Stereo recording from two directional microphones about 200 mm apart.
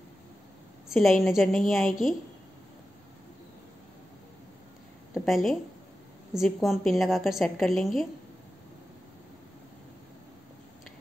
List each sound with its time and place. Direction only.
0.8 s a woman's voice: centre (ahead or behind)
5.1 s a woman's voice: centre (ahead or behind)